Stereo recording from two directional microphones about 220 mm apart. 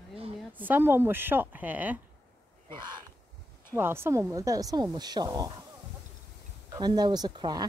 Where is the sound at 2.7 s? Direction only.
20° right (ahead or behind).